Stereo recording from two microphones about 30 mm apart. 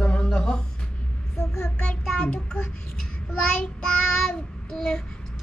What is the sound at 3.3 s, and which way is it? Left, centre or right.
Child singing, left.